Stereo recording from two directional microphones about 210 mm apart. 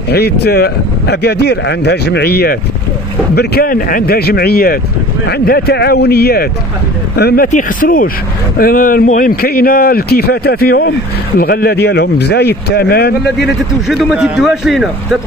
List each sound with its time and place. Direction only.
0.1 s speech: 50° left (ahead or behind)
13.4 s a man's voice: centre (ahead or behind)